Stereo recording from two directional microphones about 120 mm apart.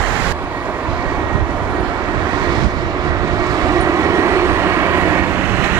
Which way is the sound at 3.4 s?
30° right (ahead or behind).